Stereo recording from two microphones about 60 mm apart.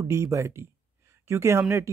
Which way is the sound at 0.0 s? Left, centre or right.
Right.